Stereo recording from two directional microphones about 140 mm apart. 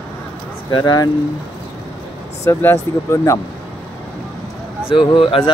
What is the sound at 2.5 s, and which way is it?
Speech, 15° left (ahead or behind).